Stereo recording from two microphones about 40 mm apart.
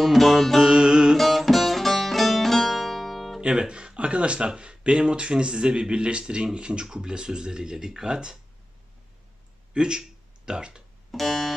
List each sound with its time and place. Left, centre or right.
0.0 s music: centre
0.6 s music: centre
1.1 s music: centre
3.3 s speech: right
9.8 s speech: centre
11.1 s music: centre